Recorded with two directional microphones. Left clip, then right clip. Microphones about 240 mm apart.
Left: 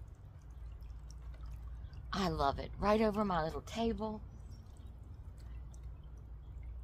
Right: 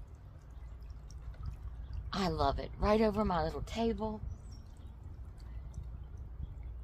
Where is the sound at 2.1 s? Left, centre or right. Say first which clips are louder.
Right 1 dB; centre.